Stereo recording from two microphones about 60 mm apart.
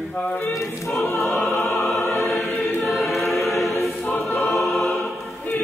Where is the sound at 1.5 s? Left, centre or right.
Left.